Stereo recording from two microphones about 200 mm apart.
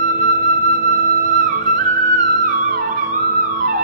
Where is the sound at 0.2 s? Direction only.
40° right (ahead or behind).